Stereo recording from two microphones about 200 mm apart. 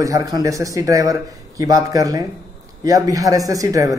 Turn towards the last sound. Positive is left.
turn(degrees=-15)  # may be behind; listen again after turning